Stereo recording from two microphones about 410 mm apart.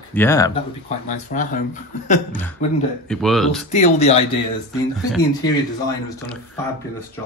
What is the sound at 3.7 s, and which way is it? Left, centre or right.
Speech, centre.